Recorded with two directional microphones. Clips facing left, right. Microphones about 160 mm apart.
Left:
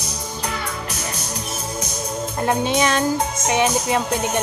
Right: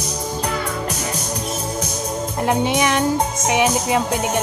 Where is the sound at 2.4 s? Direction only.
15° right (ahead or behind).